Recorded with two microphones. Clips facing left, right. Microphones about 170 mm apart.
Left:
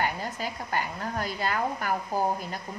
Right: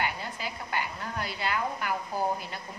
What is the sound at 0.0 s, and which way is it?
Speech, 45° left (ahead or behind).